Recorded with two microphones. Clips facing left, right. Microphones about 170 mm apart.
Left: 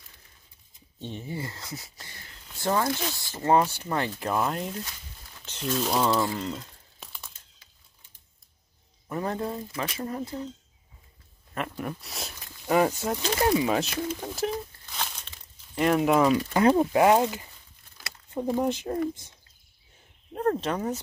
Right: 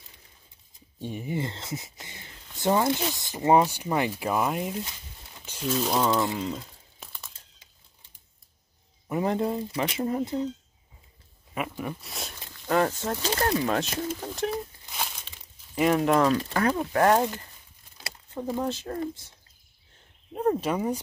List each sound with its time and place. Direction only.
0.9 s speech: 10° right (ahead or behind)
1.4 s speech: 25° right (ahead or behind); by 6.2 s centre (ahead or behind)
6.3 s a sound: 5° right (ahead or behind)
9.1 s speech: 20° right (ahead or behind)
11.5 s speech: 5° right (ahead or behind)
14.9 s crumpling: 5° right (ahead or behind)
16.9 s speech: 10° left (ahead or behind)
20.3 s speech: 10° right (ahead or behind)